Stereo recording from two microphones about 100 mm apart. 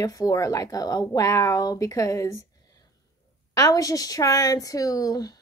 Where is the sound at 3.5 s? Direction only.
35° left (ahead or behind).